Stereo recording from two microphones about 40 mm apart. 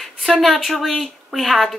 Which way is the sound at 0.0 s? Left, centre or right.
Centre.